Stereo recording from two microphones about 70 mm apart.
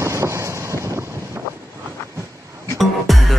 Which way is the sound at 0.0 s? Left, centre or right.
Right.